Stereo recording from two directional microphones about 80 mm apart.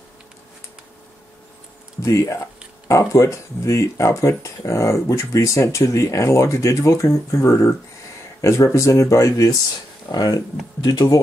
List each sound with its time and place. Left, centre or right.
2.0 s speech: left
10.1 s speech: left